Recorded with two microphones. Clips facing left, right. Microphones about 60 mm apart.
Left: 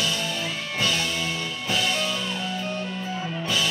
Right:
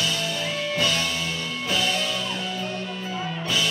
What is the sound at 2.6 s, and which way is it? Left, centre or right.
Music, left.